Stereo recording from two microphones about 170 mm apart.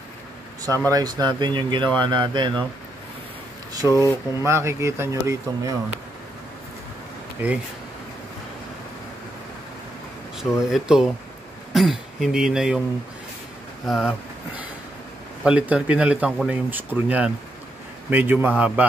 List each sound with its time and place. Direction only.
0.8 s speech: 20° right (ahead or behind)
3.9 s speech: 20° left (ahead or behind)
4.5 s speech: 15° right (ahead or behind)
7.4 s speech: 10° right (ahead or behind)
10.7 s speech: 5° right (ahead or behind)
13.8 s speech: centre (ahead or behind)
15.4 s speech: 5° right (ahead or behind)